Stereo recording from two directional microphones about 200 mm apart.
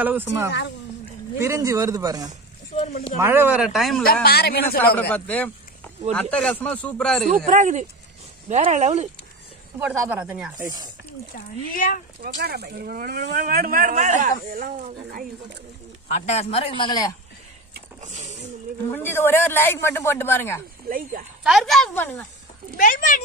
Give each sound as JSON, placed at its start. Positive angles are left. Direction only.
{"t": 0.0, "sound": "speech", "side_deg": -10}
{"t": 4.0, "sound": "a man's voice", "side_deg": 50}
{"t": 5.1, "sound": "a man's voice", "side_deg": 5}
{"t": 7.2, "sound": "speech", "side_deg": -40}
{"t": 9.8, "sound": "speech", "side_deg": -10}
{"t": 11.3, "sound": "a man's voice", "side_deg": 45}
{"t": 12.2, "sound": "speech", "side_deg": -55}
{"t": 16.1, "sound": "speech", "side_deg": 35}
{"t": 18.0, "sound": "speech", "side_deg": -35}
{"t": 18.9, "sound": "a man's voice", "side_deg": 10}
{"t": 21.5, "sound": "a woman's voice", "side_deg": 0}
{"t": 22.8, "sound": "a man's voice", "side_deg": 45}